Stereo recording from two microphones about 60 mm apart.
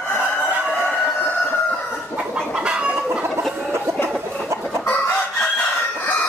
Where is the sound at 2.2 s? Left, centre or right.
Centre.